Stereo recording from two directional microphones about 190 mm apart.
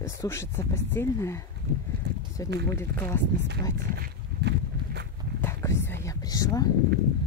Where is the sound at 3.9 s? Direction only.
60° right (ahead or behind).